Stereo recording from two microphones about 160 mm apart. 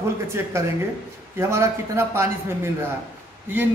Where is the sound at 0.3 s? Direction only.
15° right (ahead or behind).